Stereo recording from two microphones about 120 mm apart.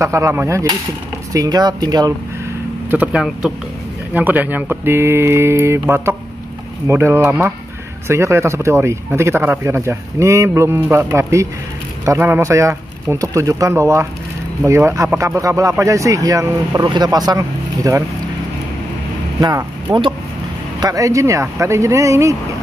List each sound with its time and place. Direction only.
0.0 s speech: 25° right (ahead or behind)
2.9 s speech: 10° right (ahead or behind); by 18.0 s 30° right (ahead or behind)
19.4 s speech: 30° right (ahead or behind)